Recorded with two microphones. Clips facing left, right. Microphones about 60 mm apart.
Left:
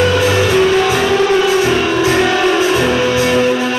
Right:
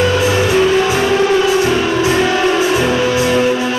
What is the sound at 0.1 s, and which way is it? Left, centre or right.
Music, left.